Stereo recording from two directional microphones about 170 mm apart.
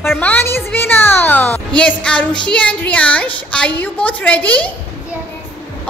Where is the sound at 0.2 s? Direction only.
10° left (ahead or behind).